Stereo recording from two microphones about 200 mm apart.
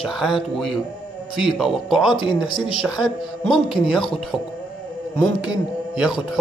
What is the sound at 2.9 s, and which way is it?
Speech, 20° left (ahead or behind).